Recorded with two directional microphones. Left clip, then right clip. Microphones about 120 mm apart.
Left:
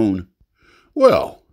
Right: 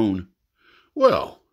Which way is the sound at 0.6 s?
55° left (ahead or behind).